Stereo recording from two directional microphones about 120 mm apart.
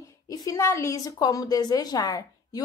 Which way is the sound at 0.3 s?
25° left (ahead or behind).